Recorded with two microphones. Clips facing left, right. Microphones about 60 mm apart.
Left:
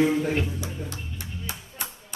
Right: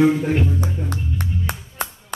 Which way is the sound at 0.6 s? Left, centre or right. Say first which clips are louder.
Right 8 dB; right.